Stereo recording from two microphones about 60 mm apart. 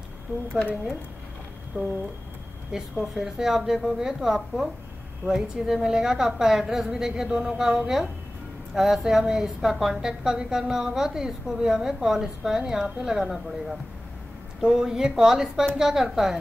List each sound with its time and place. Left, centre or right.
1.8 s speech: right
2.7 s a woman's voice: centre